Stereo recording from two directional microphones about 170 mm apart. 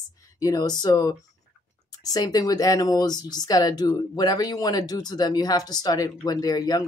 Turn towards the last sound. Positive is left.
turn(degrees=20)  # may be behind; listen again after turning